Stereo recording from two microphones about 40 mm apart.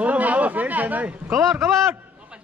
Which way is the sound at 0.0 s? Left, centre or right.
Right.